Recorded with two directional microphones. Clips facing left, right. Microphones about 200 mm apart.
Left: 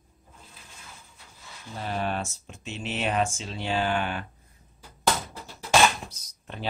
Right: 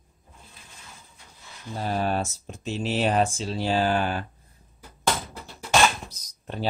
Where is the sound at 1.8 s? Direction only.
40° right (ahead or behind).